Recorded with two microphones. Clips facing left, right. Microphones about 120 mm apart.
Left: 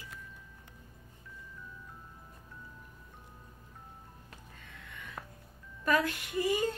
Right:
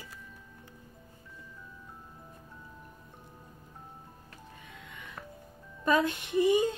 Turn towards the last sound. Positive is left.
turn(degrees=-20)  # may be behind; listen again after turning